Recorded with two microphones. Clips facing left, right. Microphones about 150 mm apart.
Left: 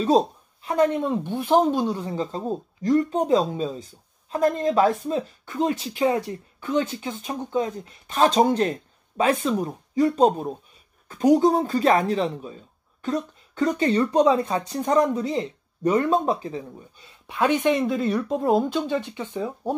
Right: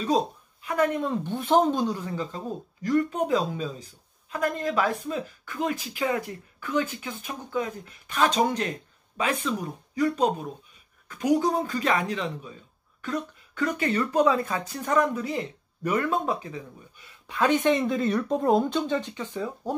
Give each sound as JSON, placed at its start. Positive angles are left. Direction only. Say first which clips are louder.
{"t": 0.0, "sound": "a woman's voice", "louder": "left 5 dB", "side_deg": 30}
{"t": 2.0, "sound": "speech", "louder": "left 4 dB", "side_deg": 30}
{"t": 17.3, "sound": "a woman's voice", "louder": "left 1 dB", "side_deg": 15}
{"t": 17.6, "sound": "speech", "louder": "left 2 dB", "side_deg": 5}